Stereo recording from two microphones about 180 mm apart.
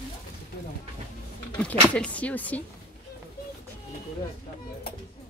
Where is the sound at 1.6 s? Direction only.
5° left (ahead or behind).